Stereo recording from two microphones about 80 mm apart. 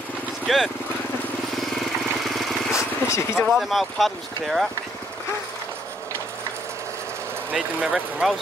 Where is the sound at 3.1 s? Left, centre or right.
Left.